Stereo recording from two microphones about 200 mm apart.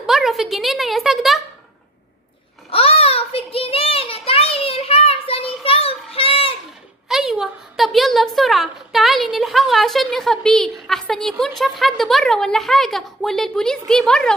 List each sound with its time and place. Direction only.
0.0 s speech: centre (ahead or behind)
2.7 s a sound: 30° left (ahead or behind)
7.1 s a woman's voice: centre (ahead or behind)